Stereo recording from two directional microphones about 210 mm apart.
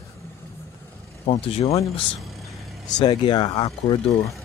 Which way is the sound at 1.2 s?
30° left (ahead or behind).